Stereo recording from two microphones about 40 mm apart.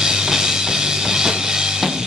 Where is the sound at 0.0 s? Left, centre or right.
Centre.